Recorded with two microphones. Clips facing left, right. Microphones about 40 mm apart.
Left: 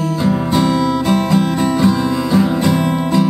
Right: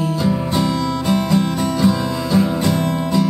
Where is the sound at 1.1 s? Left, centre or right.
Left.